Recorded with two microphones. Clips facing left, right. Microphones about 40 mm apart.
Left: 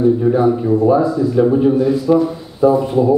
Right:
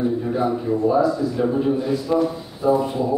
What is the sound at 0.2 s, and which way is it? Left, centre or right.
Speech, centre.